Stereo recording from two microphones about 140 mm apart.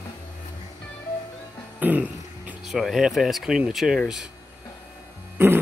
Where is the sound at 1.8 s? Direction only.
10° right (ahead or behind).